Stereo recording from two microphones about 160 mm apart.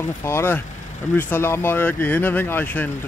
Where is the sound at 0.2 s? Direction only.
15° left (ahead or behind).